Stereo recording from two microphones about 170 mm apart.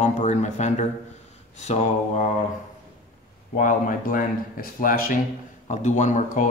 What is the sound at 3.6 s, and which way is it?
Speech, 50° left (ahead or behind).